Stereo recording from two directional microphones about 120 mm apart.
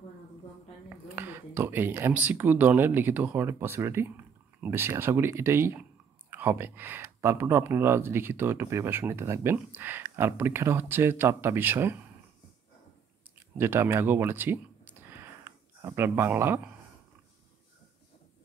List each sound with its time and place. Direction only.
0.8 s speech: 15° right (ahead or behind)
13.6 s speech: 20° right (ahead or behind)